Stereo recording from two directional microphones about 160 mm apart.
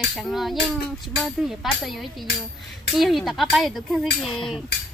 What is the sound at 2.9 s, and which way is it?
Hammer, centre (ahead or behind).